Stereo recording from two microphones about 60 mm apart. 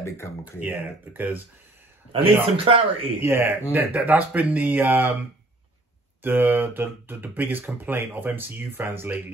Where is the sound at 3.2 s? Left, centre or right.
Right.